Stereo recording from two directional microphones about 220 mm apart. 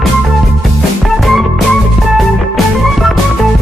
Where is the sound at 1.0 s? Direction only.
Centre (ahead or behind).